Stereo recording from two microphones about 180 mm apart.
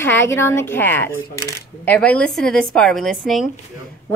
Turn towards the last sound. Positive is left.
turn(degrees=0)  # may be behind; listen again after turning